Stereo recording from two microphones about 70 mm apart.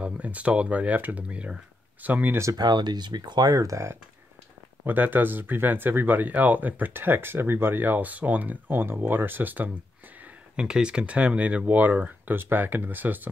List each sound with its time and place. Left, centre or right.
0.0 s speech: centre
2.5 s speech: right
4.8 s speech: right
10.5 s speech: centre